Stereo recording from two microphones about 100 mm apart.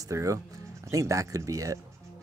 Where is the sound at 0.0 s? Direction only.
30° right (ahead or behind).